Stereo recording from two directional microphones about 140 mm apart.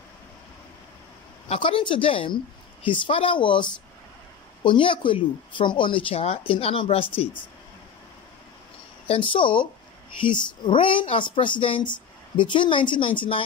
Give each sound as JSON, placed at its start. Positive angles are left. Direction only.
{"t": 1.5, "sound": "speech", "side_deg": 35}
{"t": 9.0, "sound": "speech", "side_deg": 40}